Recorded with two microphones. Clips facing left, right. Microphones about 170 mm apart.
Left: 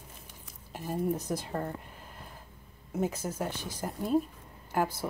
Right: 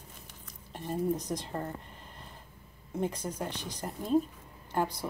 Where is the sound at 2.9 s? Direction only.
5° left (ahead or behind).